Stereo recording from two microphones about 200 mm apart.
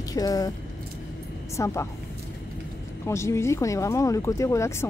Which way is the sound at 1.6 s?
15° left (ahead or behind).